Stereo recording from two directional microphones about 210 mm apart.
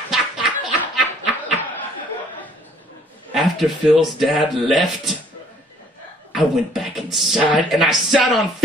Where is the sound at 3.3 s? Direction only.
5° right (ahead or behind).